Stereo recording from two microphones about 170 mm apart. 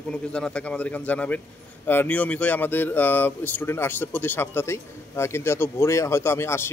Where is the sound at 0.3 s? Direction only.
5° left (ahead or behind).